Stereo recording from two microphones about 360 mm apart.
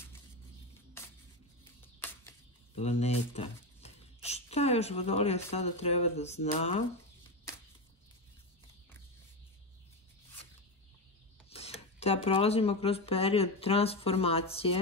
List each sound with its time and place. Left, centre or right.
1.6 s music: centre
2.7 s speech: centre
11.5 s speech: centre